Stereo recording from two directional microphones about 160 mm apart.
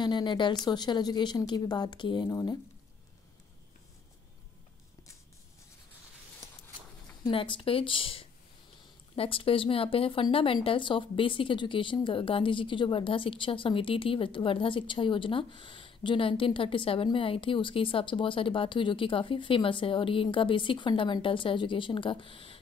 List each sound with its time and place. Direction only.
0.0 s speech: 30° left (ahead or behind)
7.2 s speech: 30° left (ahead or behind)